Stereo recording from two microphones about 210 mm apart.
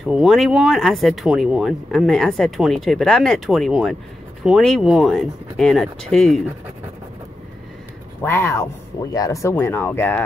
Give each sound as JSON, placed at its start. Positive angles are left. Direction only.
{"t": 0.0, "sound": "speech", "side_deg": 0}
{"t": 8.2, "sound": "speech", "side_deg": 10}